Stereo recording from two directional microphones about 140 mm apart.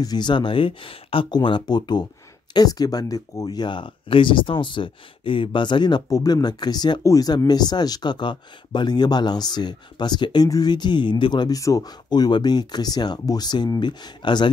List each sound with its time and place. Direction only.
0.0 s speech: 30° left (ahead or behind)